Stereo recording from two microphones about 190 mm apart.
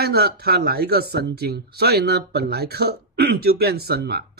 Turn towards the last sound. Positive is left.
turn(degrees=-55)  # may be behind; listen again after turning